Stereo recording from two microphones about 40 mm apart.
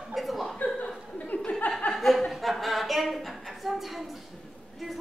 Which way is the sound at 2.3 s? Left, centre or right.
Centre.